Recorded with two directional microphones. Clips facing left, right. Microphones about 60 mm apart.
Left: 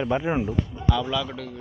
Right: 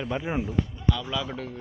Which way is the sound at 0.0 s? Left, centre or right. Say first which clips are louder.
Left 5 dB; left.